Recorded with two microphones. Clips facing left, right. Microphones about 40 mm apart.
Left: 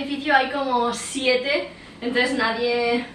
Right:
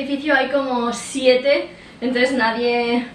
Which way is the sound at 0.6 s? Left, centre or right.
Right.